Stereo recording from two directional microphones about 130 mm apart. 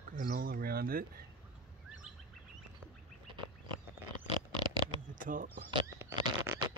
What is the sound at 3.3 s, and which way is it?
Duck, 40° right (ahead or behind).